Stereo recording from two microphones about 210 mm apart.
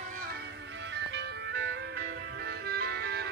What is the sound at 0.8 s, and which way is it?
Music, 60° right (ahead or behind).